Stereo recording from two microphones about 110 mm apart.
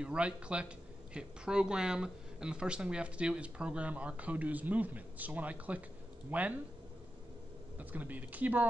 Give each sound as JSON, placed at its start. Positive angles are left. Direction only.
{"t": 0.0, "sound": "speech", "side_deg": -10}
{"t": 7.8, "sound": "speech", "side_deg": -15}